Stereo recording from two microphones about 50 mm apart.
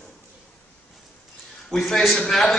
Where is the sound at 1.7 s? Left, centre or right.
Centre.